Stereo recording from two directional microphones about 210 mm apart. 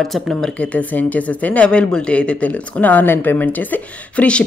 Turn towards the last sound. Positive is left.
turn(degrees=5)  # may be behind; listen again after turning